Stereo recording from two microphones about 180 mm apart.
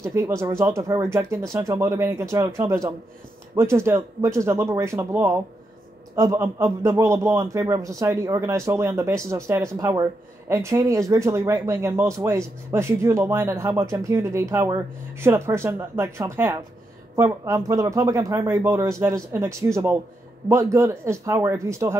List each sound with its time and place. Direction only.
0.0 s speech: 15° right (ahead or behind)